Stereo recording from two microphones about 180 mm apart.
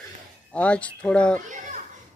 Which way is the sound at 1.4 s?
45° right (ahead or behind).